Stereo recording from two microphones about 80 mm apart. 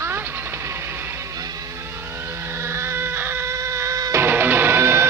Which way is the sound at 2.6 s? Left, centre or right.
Right.